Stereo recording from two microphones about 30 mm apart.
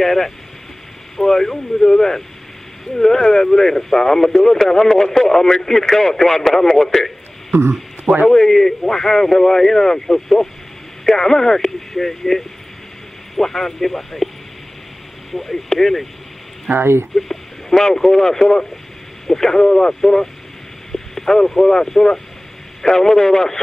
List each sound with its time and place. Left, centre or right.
0.0 s speech: centre
8.3 s a sound: centre
8.9 s speech: centre
15.3 s speech: centre
17.3 s speech: centre
20.9 s a sound: centre
21.6 s speech: centre